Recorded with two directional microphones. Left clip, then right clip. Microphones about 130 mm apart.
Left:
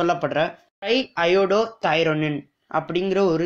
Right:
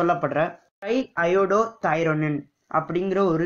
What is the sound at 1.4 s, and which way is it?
Speech, 55° left (ahead or behind).